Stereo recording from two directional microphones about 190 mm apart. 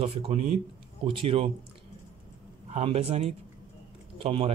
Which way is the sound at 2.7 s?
35° right (ahead or behind).